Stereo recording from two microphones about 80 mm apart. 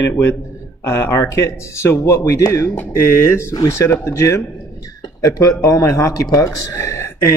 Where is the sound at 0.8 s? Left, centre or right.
Left.